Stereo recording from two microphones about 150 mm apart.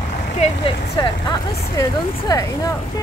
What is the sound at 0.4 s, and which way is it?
Speech, 35° left (ahead or behind).